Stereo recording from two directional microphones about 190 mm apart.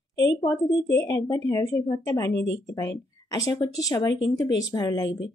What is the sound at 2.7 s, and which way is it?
Speech, 20° left (ahead or behind).